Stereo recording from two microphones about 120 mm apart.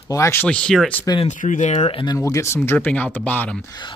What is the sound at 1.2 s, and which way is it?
Speech, 85° left.